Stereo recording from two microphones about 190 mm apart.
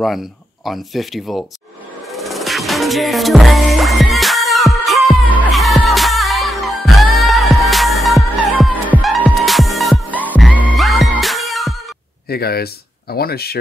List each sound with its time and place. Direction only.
0.7 s speech: centre (ahead or behind)
2.1 s music: centre (ahead or behind)
10.3 s music: 10° right (ahead or behind)
12.3 s speech: 55° left (ahead or behind)